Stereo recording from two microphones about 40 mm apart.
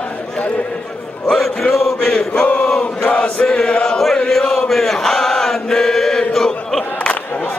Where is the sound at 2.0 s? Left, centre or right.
Centre.